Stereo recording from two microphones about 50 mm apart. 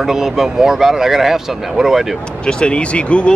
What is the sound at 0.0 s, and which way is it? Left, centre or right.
Speech, centre.